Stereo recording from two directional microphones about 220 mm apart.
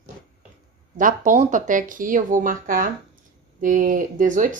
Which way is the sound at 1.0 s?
35° right (ahead or behind).